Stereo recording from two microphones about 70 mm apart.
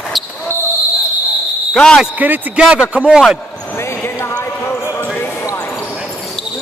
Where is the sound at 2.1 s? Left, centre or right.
Right.